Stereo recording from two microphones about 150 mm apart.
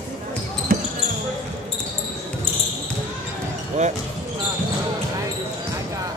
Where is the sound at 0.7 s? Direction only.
70° right (ahead or behind).